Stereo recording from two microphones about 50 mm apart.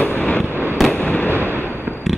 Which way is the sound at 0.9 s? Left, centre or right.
Left.